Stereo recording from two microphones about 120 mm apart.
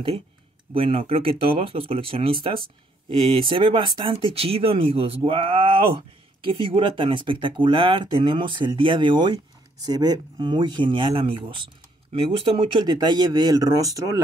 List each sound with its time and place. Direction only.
0.7 s speech: 50° right (ahead or behind); by 14.2 s 30° right (ahead or behind)